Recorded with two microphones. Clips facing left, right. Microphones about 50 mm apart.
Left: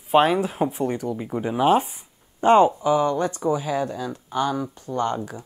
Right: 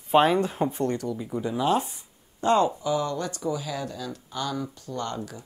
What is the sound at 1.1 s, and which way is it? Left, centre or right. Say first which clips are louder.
Speech: left 3 dB; left.